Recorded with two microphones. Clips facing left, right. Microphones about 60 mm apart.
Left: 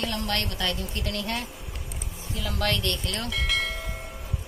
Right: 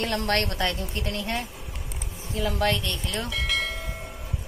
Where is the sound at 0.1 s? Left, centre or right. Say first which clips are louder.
Right 4 dB; right.